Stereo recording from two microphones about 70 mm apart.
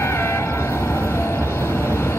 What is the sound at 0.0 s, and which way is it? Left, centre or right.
Train, left.